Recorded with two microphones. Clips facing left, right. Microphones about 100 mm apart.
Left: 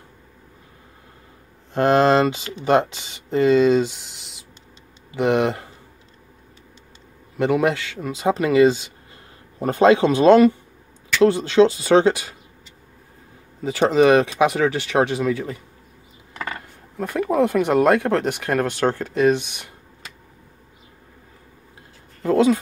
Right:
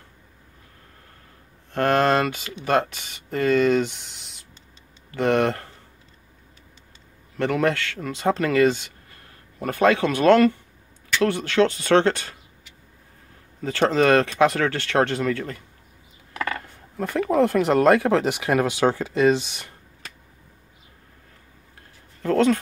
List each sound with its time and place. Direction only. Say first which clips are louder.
1.7 s speech: left 4 dB; 20° left (ahead or behind)
7.3 s speech: left 3 dB; 15° left (ahead or behind)
13.6 s speech: left 3 dB; 10° left (ahead or behind)
22.2 s speech: left 2 dB; 10° left (ahead or behind)